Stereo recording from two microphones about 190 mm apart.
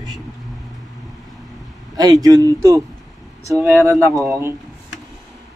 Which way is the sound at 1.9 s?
20° right (ahead or behind).